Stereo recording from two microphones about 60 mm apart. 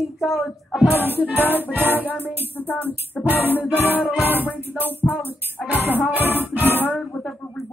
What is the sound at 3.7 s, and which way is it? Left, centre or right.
Music, left.